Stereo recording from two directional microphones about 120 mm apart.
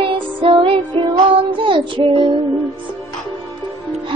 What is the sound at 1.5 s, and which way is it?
Child singing, 45° right (ahead or behind).